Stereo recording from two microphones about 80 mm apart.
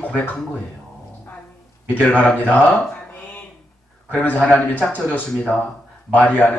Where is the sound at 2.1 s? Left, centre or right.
Centre.